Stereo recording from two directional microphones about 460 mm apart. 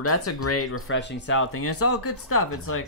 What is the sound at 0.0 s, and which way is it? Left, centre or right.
Speech, left.